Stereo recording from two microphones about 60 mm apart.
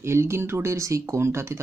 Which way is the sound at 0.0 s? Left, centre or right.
Right.